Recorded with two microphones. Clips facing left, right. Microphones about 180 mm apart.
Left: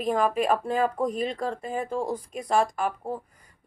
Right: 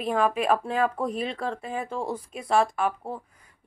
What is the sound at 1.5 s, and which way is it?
Speech, 35° left (ahead or behind).